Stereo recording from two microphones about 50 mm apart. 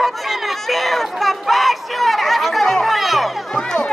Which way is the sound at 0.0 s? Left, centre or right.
Centre.